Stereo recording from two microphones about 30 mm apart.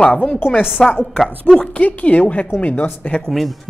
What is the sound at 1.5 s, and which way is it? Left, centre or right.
Speech, left.